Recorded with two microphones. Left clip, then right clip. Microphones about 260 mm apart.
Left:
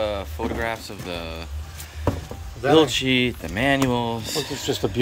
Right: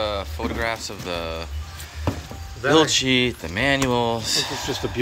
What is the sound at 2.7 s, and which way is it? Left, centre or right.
Speech, centre.